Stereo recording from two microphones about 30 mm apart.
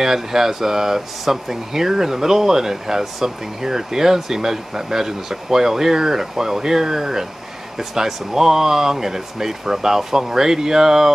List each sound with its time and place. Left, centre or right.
0.0 s speech: centre